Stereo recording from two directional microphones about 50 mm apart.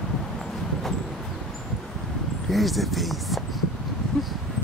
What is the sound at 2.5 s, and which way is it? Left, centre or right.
Speech, centre.